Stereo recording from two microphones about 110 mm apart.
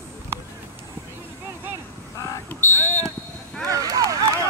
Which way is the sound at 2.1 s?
30° left (ahead or behind).